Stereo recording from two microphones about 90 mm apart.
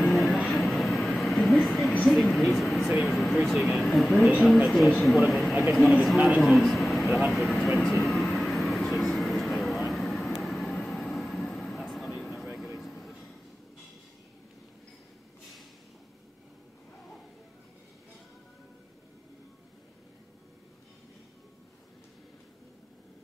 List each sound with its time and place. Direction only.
0.1 s vehicle: centre (ahead or behind)
2.0 s speech: centre (ahead or behind)
6.4 s vehicle: centre (ahead or behind)
12.7 s a sound: centre (ahead or behind)